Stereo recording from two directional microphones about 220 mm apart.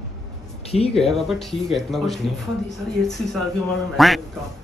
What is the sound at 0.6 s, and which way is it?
Speech, 25° left (ahead or behind).